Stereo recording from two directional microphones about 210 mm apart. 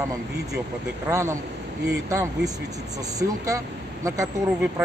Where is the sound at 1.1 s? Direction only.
15° right (ahead or behind).